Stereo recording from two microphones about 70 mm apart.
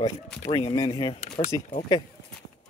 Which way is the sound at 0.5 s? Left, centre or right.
Left.